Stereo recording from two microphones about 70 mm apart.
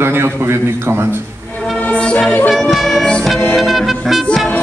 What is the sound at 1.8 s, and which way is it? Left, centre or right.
Music, centre.